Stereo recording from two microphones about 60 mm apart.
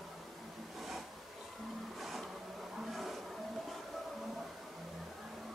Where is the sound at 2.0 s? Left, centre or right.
Centre.